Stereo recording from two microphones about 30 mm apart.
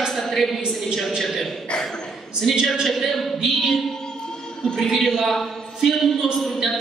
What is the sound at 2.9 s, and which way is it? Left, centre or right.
Speech, centre.